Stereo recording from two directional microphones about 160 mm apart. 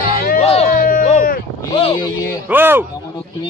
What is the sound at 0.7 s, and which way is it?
Speech, 60° left (ahead or behind).